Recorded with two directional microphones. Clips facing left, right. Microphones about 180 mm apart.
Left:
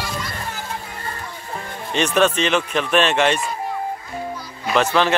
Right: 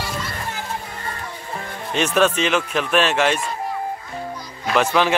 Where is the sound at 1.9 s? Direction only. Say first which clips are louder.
Even; 5° right (ahead or behind).